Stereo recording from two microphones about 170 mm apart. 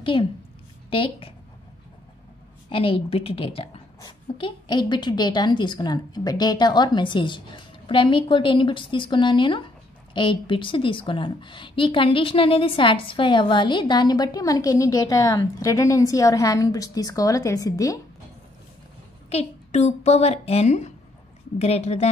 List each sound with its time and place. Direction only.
0.0 s a woman's voice: 30° left (ahead or behind)
2.7 s a woman's voice: 35° left (ahead or behind)
19.2 s a woman's voice: 40° left (ahead or behind)